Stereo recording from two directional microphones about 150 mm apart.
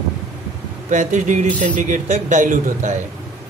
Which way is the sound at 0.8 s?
55° right (ahead or behind).